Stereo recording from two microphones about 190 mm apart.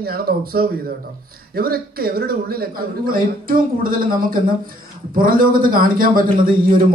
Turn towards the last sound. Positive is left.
turn(degrees=-50)  # may be behind; listen again after turning